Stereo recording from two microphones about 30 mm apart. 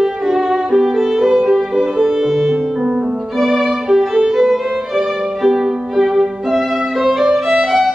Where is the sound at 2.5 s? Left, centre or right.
Right.